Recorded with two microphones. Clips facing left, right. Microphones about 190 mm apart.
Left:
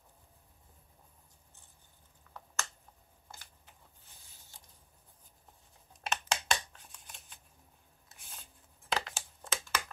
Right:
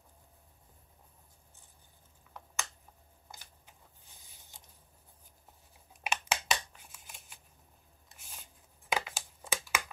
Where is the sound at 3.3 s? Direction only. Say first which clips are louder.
Even; 15° right (ahead or behind).